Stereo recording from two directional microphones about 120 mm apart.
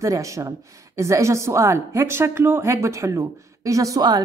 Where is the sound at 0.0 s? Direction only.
25° right (ahead or behind).